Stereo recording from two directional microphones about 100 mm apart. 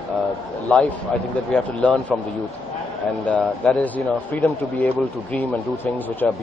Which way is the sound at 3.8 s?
15° left (ahead or behind).